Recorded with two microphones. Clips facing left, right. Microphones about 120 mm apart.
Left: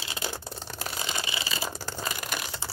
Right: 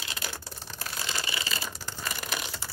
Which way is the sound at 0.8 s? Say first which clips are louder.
Left 2 dB; 20° left (ahead or behind).